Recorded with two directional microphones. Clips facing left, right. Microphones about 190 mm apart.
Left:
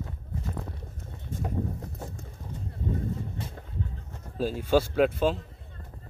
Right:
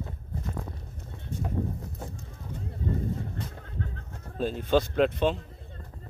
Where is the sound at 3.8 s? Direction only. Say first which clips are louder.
Right 1 dB; 70° right (ahead or behind).